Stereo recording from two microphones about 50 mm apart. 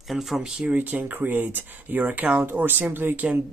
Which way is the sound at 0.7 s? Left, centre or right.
Right.